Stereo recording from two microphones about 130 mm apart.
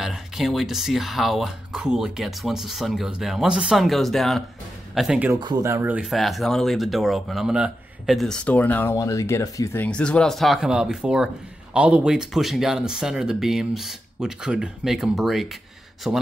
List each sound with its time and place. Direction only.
0.0 s speech: centre (ahead or behind)
5.6 s speech: 20° right (ahead or behind)
6.0 s speech: centre (ahead or behind)
8.9 s speech: 25° left (ahead or behind)
9.8 s speech: 10° left (ahead or behind)